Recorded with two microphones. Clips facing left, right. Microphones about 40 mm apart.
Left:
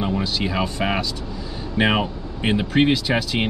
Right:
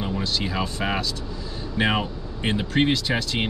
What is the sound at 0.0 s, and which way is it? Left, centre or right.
Speech, centre.